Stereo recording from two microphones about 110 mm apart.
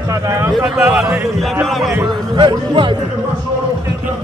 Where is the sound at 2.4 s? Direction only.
50° right (ahead or behind).